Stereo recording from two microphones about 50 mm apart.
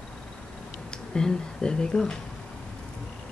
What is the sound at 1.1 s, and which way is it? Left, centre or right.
Speech, centre.